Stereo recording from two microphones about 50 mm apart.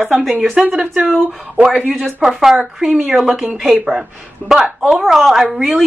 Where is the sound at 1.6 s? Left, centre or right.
Right.